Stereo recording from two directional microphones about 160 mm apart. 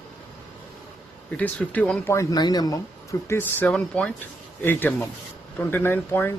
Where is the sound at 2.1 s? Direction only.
20° left (ahead or behind).